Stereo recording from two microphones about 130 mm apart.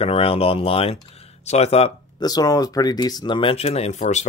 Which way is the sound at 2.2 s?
30° left (ahead or behind).